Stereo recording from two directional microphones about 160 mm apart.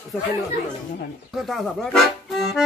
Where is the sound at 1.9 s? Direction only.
Centre (ahead or behind).